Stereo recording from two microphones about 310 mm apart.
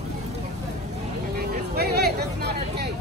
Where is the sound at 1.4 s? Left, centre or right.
Right.